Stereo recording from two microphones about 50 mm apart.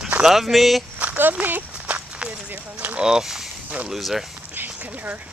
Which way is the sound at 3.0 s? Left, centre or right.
Centre.